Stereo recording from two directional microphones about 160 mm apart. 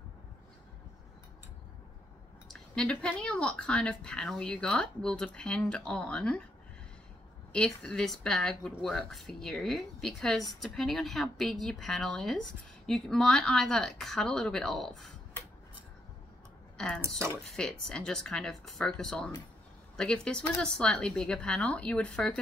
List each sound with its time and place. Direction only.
2.7 s a woman's voice: 5° left (ahead or behind)
7.5 s a woman's voice: 5° left (ahead or behind)
16.7 s a woman's voice: 5° left (ahead or behind)